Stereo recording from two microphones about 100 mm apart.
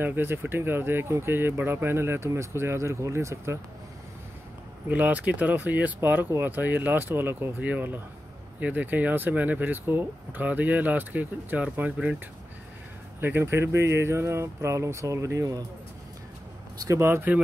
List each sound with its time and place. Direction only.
0.0 s speech: 20° right (ahead or behind)
4.8 s speech: 15° right (ahead or behind)
13.2 s speech: 25° right (ahead or behind)
16.8 s speech: 30° right (ahead or behind)